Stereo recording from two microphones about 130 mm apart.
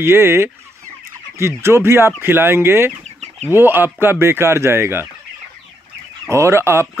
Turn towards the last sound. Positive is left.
turn(degrees=-20)  # may be behind; listen again after turning